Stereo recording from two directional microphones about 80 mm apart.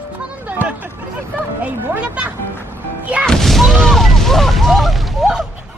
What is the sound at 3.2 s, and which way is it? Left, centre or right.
Boom, centre.